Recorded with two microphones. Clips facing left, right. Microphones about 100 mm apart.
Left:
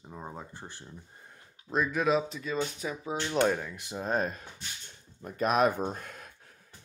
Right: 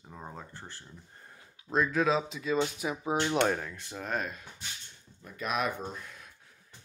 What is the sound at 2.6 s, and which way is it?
Speech, 15° right (ahead or behind).